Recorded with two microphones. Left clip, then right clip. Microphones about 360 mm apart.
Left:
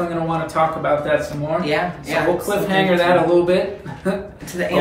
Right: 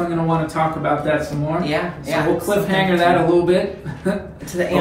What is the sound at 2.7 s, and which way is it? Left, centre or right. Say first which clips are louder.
Speech: left 2 dB; centre.